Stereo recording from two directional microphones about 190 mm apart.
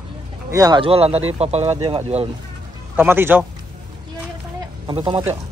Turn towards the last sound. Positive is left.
turn(degrees=-25)  # may be behind; listen again after turning